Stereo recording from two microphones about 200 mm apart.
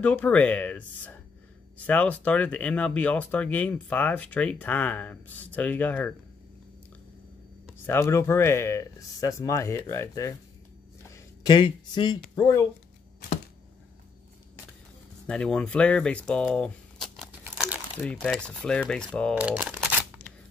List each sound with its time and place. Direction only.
0.0 s speech: 5° left (ahead or behind)
7.8 s speech: 10° left (ahead or behind)
15.2 s speech: 5° left (ahead or behind)
17.4 s crumpling: 5° right (ahead or behind)
18.0 s typewriter: 5° left (ahead or behind)
19.3 s speech: 5° right (ahead or behind)